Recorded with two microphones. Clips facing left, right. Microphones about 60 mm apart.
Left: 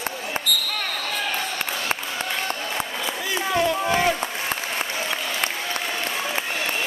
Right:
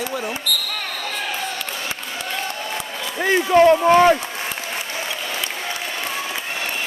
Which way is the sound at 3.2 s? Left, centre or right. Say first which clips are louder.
Right 10 dB; right.